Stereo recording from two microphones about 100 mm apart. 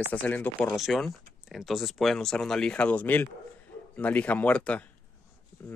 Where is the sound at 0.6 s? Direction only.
Centre (ahead or behind).